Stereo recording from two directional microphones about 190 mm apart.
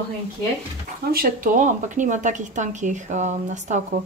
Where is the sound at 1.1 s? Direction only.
45° right (ahead or behind).